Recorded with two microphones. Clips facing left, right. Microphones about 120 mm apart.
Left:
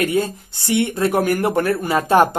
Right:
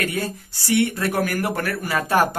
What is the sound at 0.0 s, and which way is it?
Speech, 20° left (ahead or behind).